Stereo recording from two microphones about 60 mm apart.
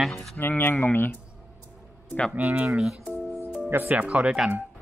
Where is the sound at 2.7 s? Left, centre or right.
Centre.